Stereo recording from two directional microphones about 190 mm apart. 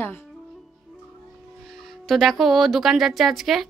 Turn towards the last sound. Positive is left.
turn(degrees=0)  # may be behind; listen again after turning